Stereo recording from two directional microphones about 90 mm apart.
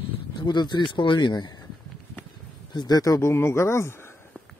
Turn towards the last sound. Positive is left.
turn(degrees=30)  # may be behind; listen again after turning